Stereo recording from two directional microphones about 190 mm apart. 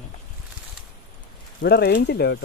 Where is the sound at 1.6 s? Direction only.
55° left (ahead or behind).